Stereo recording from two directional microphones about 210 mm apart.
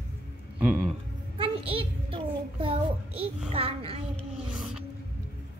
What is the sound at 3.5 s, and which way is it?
Child singing, 25° right (ahead or behind).